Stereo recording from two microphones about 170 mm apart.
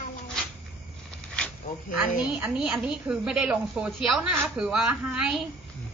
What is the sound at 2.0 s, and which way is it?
A woman's voice, 5° right (ahead or behind).